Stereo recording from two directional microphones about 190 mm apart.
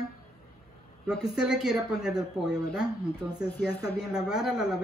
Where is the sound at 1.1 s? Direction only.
5° right (ahead or behind).